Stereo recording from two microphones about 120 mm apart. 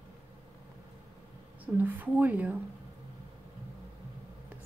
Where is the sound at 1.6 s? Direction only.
15° right (ahead or behind).